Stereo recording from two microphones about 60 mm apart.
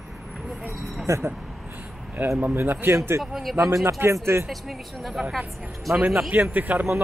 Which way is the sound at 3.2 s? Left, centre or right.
Centre.